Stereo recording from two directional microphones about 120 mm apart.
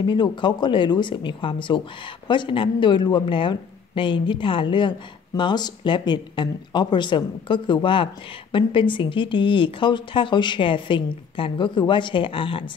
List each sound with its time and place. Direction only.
0.0 s speech: 40° left (ahead or behind)